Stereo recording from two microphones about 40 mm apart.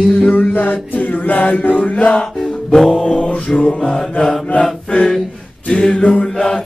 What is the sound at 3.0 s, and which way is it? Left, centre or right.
Music, left.